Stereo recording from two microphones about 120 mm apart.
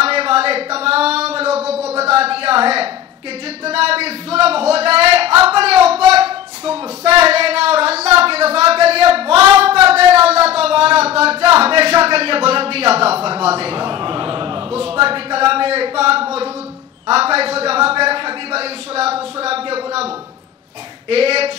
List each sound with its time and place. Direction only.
0.0 s a sound: 55° right (ahead or behind)
11.5 s a man's voice: 55° right (ahead or behind)
21.1 s a man's voice: 55° right (ahead or behind)